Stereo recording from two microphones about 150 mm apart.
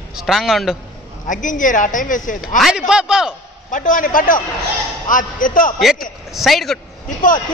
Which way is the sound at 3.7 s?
60° left (ahead or behind).